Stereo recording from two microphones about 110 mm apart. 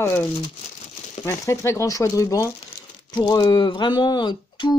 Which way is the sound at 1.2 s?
25° left (ahead or behind).